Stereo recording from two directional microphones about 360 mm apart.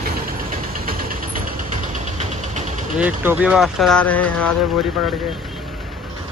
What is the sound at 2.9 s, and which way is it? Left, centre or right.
Speech, centre.